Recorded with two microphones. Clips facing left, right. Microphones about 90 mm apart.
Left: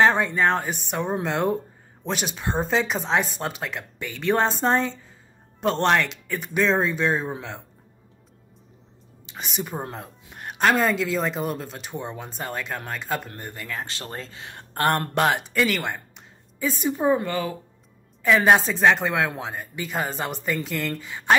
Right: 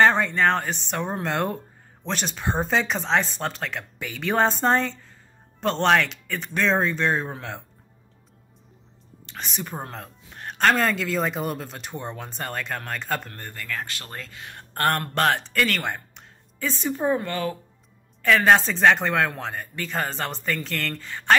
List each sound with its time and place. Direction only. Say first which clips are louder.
0.0 s a woman's voice: even; 5° left (ahead or behind)
9.2 s a woman's voice: left 2 dB; 5° left (ahead or behind)
13.3 s speech: even; 20° left (ahead or behind)
15.8 s speech: even; centre (ahead or behind)